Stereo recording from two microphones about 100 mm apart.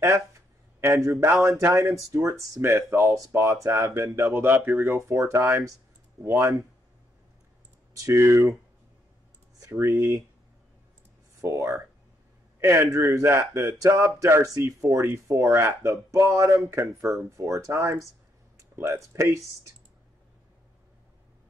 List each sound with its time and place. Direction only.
0.7 s speech: 30° right (ahead or behind)
1.7 s speech: centre (ahead or behind)
2.0 s speech: 35° right (ahead or behind)
7.9 s speech: 30° right (ahead or behind)
9.6 s speech: 30° right (ahead or behind)
11.4 s speech: 30° right (ahead or behind)